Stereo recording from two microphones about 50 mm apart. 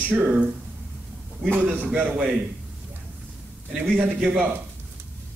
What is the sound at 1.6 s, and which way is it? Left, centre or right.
Speech, right.